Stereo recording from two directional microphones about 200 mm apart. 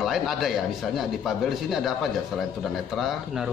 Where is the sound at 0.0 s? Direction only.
Centre (ahead or behind).